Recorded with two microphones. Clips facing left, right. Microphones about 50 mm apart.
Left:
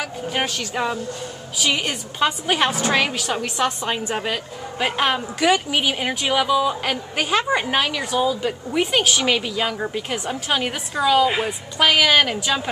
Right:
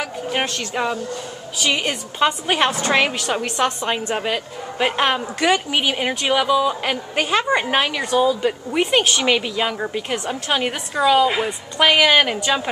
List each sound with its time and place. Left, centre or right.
0.0 s a woman's voice: centre
8.0 s a woman's voice: centre
11.2 s a woman's voice: centre
11.8 s a woman's voice: centre